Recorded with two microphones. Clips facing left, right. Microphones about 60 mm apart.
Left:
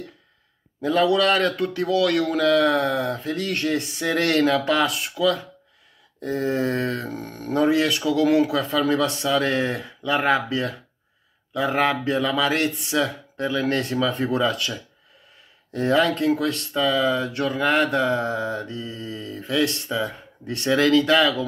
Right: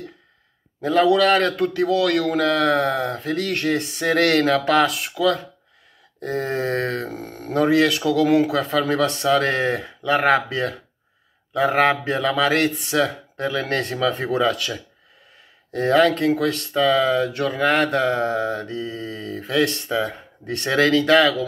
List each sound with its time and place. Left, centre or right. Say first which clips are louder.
1.2 s speech: right 3 dB; right
5.2 s speech: right 1 dB; right
6.2 s speech: even; right
7.2 s speech: even; centre
7.5 s speech: right 2 dB; right
11.9 s speech: right 1 dB; right
12.2 s speech: right 3 dB; right
15.7 s speech: right 3 dB; right